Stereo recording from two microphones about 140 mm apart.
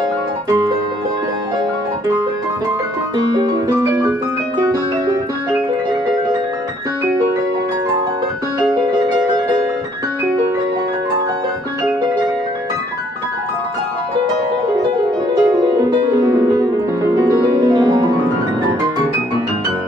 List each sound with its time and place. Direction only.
3.3 s music: 30° right (ahead or behind)
15.3 s music: 25° right (ahead or behind)